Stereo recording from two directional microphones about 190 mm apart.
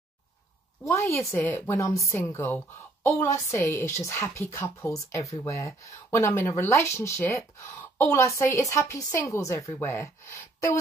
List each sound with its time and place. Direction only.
0.8 s speech: 15° left (ahead or behind)